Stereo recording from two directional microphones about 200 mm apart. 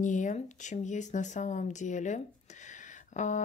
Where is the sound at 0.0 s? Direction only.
40° left (ahead or behind).